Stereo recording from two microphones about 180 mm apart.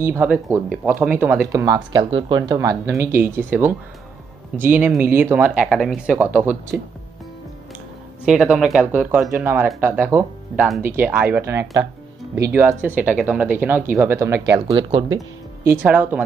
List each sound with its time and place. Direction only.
0.0 s speech: 10° right (ahead or behind)
8.3 s speech: 5° right (ahead or behind)